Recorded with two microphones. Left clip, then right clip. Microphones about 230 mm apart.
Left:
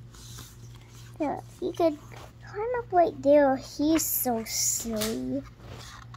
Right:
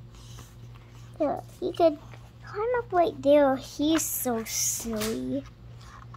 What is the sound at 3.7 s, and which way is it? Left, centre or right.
Speech, centre.